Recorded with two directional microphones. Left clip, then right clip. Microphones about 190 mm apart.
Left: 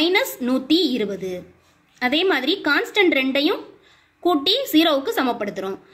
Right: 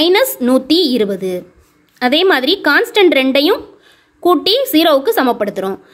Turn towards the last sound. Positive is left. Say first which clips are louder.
# right 8 dB
turn(degrees=-40)  # may be behind; listen again after turning